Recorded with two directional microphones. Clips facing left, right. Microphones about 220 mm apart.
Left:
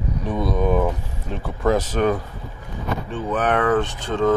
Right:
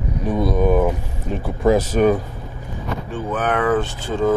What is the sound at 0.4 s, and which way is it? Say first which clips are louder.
Speech: right 3 dB; 5° right (ahead or behind).